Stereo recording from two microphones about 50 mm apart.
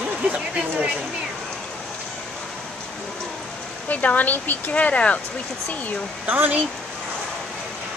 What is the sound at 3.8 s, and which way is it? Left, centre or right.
Speech, left.